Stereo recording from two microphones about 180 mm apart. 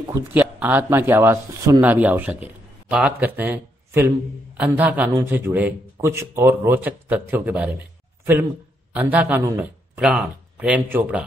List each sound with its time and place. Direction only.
0.1 s speech: 10° right (ahead or behind)
8.9 s speech: 10° right (ahead or behind)
9.9 s speech: 5° right (ahead or behind)